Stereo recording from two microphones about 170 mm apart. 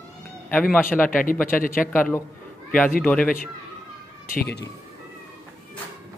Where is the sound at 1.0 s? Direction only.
55° left (ahead or behind).